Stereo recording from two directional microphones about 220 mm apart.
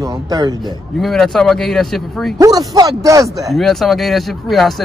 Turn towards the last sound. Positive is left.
turn(degrees=0)  # may be behind; listen again after turning